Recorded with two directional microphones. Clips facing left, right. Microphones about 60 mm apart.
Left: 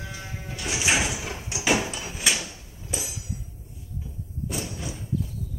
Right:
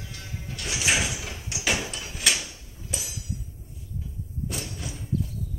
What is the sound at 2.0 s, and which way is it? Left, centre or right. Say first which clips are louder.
Drawer open or close: left 2 dB; centre.